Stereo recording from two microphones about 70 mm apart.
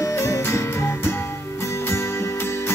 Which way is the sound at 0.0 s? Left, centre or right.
Left.